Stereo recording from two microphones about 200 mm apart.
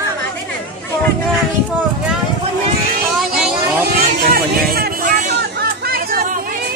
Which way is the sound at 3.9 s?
50° right (ahead or behind).